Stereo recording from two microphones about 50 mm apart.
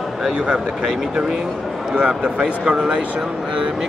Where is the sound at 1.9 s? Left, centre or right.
Right.